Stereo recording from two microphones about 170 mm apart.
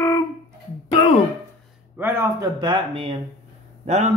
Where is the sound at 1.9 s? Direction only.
15° right (ahead or behind).